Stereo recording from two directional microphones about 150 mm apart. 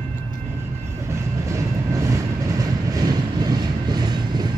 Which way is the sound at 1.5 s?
20° right (ahead or behind).